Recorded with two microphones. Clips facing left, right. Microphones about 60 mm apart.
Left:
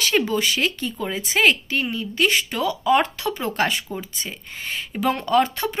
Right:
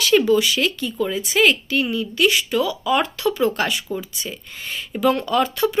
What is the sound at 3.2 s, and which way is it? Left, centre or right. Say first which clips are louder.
A woman's voice: right 3 dB; left.